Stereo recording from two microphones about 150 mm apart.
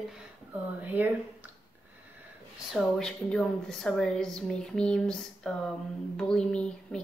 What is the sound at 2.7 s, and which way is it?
A woman's voice, centre (ahead or behind).